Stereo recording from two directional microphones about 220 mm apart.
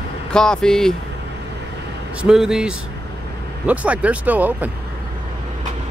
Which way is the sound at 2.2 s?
5° right (ahead or behind).